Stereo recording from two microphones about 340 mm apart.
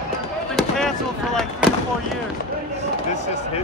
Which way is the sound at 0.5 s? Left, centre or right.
Centre.